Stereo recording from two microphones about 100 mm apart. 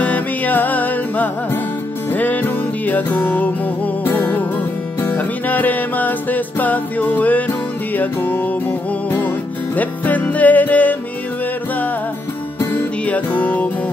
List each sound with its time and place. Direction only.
0.0 s music: 15° left (ahead or behind)
9.8 s music: 15° left (ahead or behind)
12.5 s music: 15° left (ahead or behind)